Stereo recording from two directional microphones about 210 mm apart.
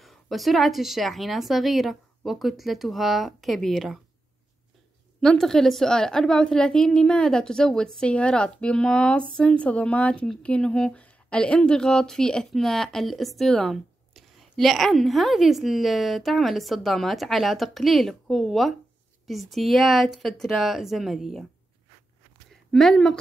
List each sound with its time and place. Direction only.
0.0 s a woman's voice: centre (ahead or behind)
5.2 s a woman's voice: 5° left (ahead or behind)
22.5 s speech: centre (ahead or behind)